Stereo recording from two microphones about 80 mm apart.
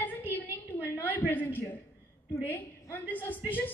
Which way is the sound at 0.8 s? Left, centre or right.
Left.